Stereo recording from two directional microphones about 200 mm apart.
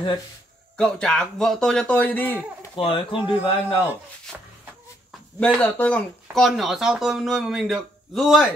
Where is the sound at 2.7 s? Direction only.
25° left (ahead or behind).